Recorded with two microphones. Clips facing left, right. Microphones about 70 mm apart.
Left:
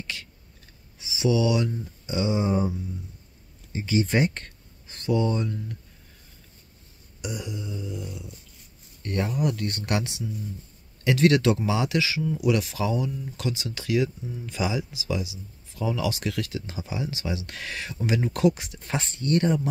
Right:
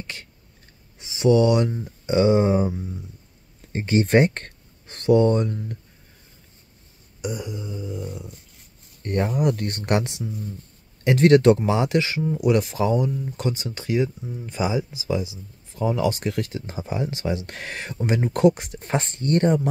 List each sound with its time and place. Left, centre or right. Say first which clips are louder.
0.0 s a sound: even; right
0.9 s speech: right 6 dB; right
7.2 s speech: right 4 dB; right